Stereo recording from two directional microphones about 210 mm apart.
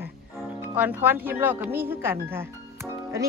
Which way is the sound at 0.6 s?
10° right (ahead or behind).